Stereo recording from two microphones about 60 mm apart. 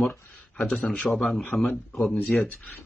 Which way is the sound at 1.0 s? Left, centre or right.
Centre.